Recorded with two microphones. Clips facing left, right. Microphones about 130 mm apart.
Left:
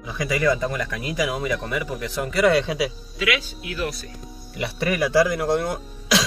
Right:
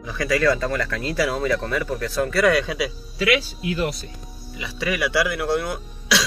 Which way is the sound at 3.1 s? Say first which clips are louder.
Right 4 dB; 35° right (ahead or behind).